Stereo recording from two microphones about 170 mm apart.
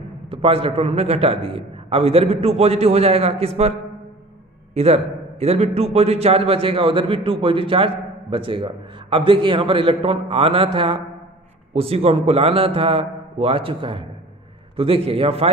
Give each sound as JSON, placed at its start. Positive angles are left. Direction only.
{"t": 0.3, "sound": "a man's voice", "side_deg": -35}
{"t": 4.7, "sound": "a man's voice", "side_deg": -35}